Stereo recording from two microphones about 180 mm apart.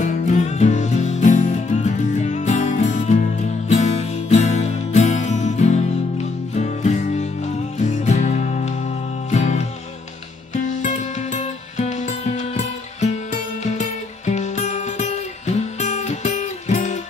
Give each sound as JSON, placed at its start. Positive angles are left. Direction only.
{"t": 0.0, "sound": "music", "side_deg": 45}